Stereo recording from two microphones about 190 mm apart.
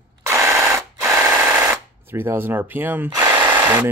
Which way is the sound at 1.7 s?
10° right (ahead or behind).